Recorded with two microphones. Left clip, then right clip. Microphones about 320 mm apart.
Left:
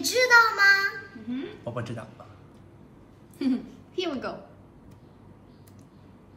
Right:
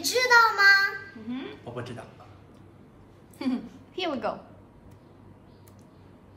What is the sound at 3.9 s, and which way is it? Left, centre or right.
Speech, right.